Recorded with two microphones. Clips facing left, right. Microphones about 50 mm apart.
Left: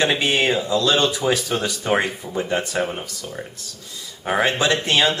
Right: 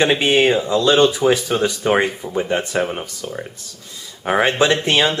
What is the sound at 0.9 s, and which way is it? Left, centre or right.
Speech, centre.